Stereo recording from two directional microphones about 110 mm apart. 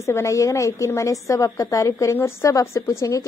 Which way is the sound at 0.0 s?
25° left (ahead or behind).